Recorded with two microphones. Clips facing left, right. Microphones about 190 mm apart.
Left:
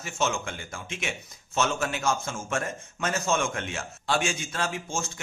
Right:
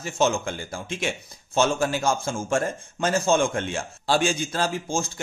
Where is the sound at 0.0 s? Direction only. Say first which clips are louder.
Right 6 dB; 35° right (ahead or behind).